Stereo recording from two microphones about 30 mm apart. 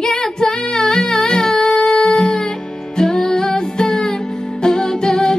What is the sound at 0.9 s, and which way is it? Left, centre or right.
Music, left.